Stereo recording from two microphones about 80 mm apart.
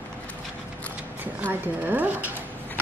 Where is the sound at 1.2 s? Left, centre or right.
Right.